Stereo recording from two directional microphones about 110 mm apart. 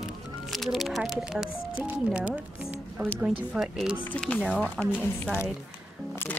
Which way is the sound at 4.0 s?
10° left (ahead or behind).